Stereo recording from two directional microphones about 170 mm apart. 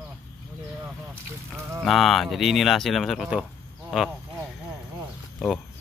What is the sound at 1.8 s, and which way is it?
Speech, centre (ahead or behind).